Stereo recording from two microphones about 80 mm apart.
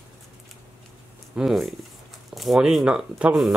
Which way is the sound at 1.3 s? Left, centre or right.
Centre.